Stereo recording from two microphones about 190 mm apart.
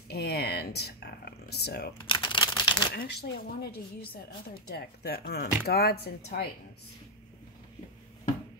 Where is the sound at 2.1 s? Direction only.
25° left (ahead or behind).